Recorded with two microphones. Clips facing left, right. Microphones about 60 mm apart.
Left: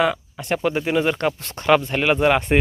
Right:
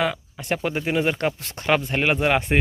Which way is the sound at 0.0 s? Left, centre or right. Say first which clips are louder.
Left 4 dB; centre.